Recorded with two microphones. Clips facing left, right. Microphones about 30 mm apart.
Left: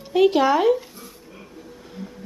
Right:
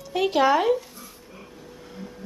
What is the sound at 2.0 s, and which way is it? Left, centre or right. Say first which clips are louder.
Music: left 3 dB; centre.